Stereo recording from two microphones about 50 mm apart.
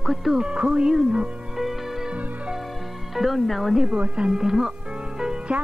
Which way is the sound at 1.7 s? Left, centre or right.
Centre.